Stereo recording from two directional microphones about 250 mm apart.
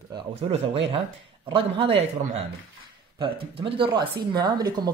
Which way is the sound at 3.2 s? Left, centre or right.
Right.